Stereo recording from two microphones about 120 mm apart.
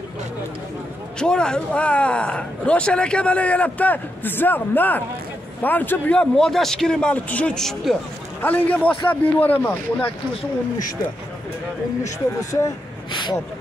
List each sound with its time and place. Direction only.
1.2 s speech: 5° left (ahead or behind)
8.4 s speech: 15° left (ahead or behind)
13.1 s speech: 40° left (ahead or behind)